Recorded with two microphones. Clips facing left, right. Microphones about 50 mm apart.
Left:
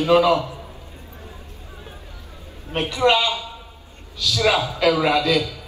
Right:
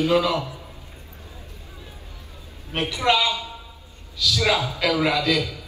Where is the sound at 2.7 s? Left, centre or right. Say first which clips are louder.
Left 3 dB; left.